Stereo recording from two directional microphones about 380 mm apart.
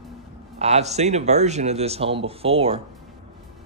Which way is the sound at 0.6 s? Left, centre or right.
Centre.